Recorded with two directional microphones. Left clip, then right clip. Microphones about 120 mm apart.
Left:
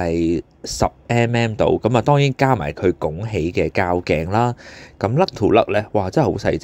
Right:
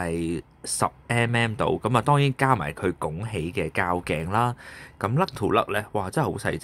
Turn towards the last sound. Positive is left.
turn(degrees=25)  # may be behind; listen again after turning